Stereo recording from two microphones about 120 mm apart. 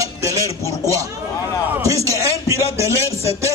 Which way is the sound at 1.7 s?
25° right (ahead or behind).